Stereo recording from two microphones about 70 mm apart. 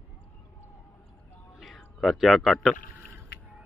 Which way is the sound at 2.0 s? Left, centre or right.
Centre.